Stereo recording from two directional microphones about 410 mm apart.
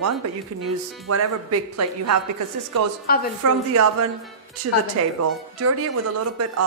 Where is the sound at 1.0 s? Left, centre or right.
Right.